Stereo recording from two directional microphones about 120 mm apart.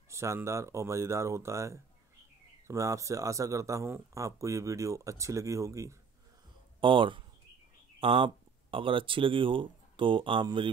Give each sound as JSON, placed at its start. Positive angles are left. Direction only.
{"t": 0.1, "sound": "speech", "side_deg": -25}
{"t": 6.8, "sound": "speech", "side_deg": -45}